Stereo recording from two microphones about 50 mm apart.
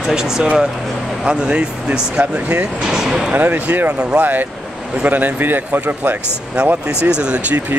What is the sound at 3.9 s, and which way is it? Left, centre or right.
Speech, right.